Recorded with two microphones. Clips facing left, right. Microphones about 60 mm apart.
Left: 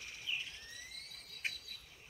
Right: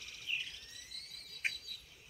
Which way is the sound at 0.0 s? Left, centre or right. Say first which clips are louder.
Right 1 dB; left.